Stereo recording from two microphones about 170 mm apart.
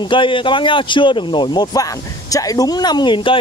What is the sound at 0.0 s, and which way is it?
Speech, 30° left (ahead or behind).